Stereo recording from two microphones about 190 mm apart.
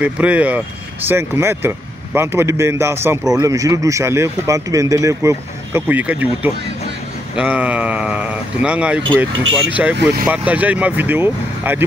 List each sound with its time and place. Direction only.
0.0 s a man's voice: 5° right (ahead or behind)
9.9 s speech: 60° right (ahead or behind)
10.2 s a man's voice: 5° right (ahead or behind)